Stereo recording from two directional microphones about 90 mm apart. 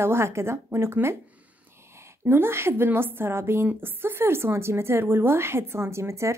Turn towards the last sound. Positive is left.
turn(degrees=-30)  # may be behind; listen again after turning